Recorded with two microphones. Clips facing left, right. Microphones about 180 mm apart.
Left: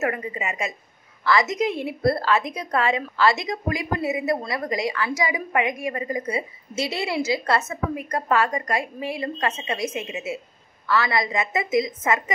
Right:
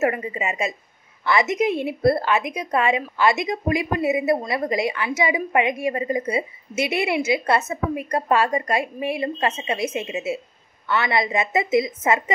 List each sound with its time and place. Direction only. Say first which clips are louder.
0.0 s a woman's voice: right 4 dB; 25° right (ahead or behind)